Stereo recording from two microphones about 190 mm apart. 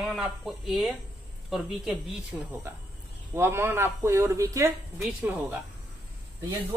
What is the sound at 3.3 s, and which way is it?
Speech, 10° right (ahead or behind).